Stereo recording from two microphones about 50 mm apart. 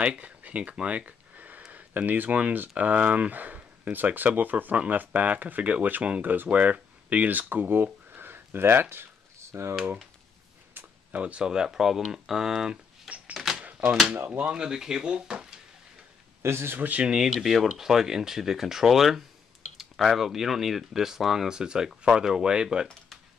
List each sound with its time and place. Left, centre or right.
0.0 s a sound: right
1.7 s speech: right
9.5 s speech: right
11.1 s speech: right
11.4 s speech: centre
13.6 s typewriter: right
14.1 s speech: right
14.5 s speech: centre
16.4 s speech: right
17.3 s speech: centre